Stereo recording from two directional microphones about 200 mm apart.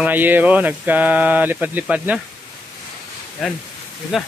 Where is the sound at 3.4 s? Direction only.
Centre (ahead or behind).